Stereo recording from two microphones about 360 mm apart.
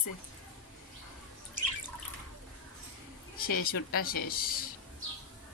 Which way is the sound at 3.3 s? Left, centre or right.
Left.